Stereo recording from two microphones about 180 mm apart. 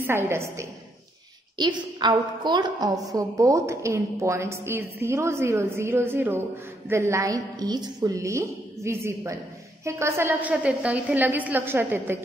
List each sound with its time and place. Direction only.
0.0 s a woman's voice: 15° right (ahead or behind)